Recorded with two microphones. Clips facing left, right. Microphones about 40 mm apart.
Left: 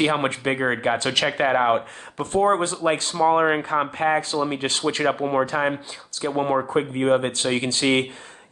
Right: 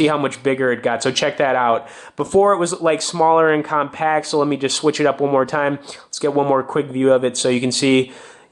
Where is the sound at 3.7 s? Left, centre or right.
Centre.